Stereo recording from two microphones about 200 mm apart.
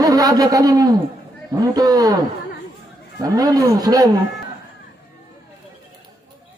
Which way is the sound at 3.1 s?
20° right (ahead or behind).